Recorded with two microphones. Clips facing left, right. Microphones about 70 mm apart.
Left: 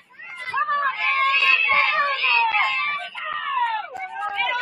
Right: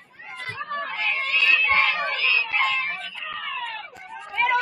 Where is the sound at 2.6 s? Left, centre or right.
Centre.